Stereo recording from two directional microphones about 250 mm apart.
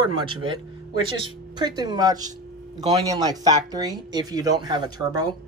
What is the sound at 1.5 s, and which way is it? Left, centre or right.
Speech, centre.